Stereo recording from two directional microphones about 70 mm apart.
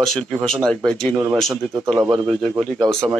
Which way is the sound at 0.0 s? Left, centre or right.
Centre.